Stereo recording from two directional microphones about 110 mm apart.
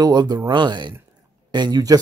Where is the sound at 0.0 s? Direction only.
35° right (ahead or behind).